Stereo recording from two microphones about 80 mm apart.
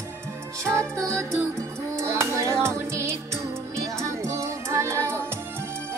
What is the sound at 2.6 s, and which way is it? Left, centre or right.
Music, right.